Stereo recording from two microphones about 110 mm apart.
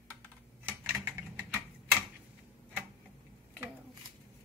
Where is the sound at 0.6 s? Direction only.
15° right (ahead or behind).